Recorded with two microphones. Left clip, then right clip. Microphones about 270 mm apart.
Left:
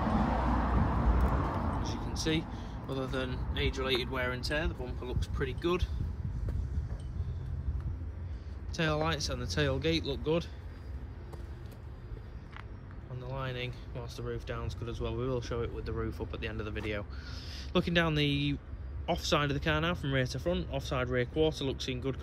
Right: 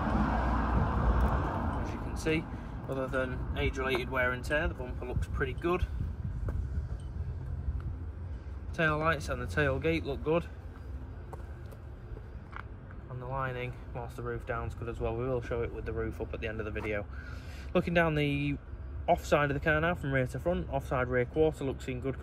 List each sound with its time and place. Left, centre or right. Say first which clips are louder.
0.0 s vehicle: even; left
1.8 s vehicle: left 1 dB; centre
2.9 s speech: right 3 dB; centre
8.7 s speech: right 3 dB; centre
13.2 s speech: right 3 dB; centre